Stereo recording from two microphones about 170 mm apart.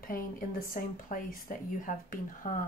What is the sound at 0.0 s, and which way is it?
Speech, 55° left (ahead or behind).